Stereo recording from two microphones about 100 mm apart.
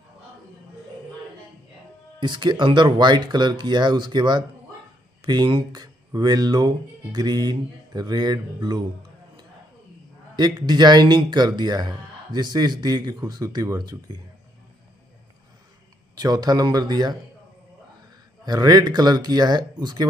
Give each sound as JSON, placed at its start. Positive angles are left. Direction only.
{"t": 2.1, "sound": "speech", "side_deg": -50}
{"t": 10.3, "sound": "speech", "side_deg": -45}
{"t": 16.2, "sound": "speech", "side_deg": -40}
{"t": 18.4, "sound": "speech", "side_deg": -40}